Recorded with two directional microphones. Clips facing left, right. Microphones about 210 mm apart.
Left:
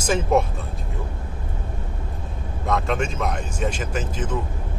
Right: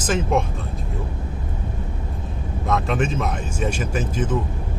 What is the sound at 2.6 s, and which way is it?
Speech, centre (ahead or behind).